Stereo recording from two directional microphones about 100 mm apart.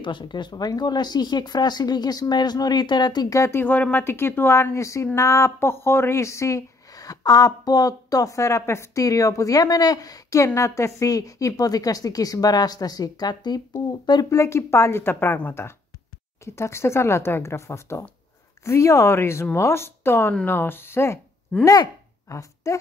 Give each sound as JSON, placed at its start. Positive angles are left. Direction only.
{"t": 0.0, "sound": "speech", "side_deg": 50}
{"t": 3.3, "sound": "speech", "side_deg": 25}
{"t": 14.3, "sound": "a woman's voice", "side_deg": 30}